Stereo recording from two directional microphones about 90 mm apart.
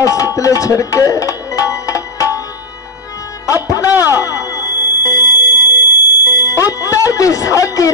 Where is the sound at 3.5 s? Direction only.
40° left (ahead or behind).